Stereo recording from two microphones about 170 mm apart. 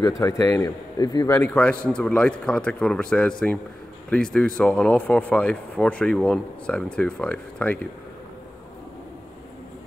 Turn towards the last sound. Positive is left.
turn(degrees=10)  # may be behind; listen again after turning